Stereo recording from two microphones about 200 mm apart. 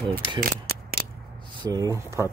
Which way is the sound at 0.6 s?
50° right (ahead or behind).